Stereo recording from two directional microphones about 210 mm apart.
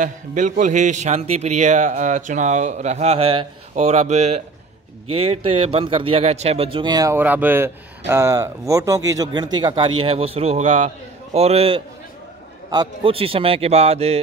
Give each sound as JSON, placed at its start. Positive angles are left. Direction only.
{"t": 0.0, "sound": "a man's voice", "side_deg": -35}